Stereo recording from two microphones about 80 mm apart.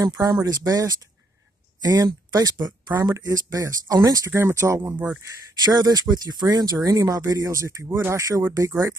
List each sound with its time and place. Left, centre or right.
0.0 s speech: right
4.3 s speech: right
5.6 s speech: right